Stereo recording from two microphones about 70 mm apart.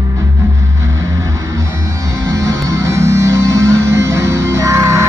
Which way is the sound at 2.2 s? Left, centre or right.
Right.